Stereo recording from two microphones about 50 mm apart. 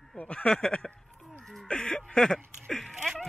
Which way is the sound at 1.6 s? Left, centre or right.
Centre.